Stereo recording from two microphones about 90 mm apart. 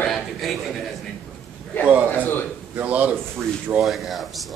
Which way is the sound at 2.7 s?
15° right (ahead or behind).